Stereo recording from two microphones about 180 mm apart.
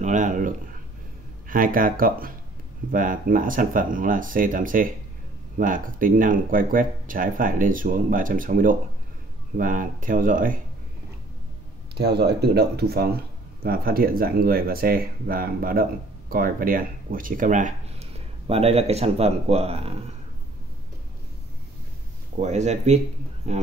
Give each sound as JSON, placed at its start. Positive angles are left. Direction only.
{"t": 0.0, "sound": "speech", "side_deg": -45}
{"t": 11.9, "sound": "speech", "side_deg": -65}
{"t": 22.4, "sound": "speech", "side_deg": -40}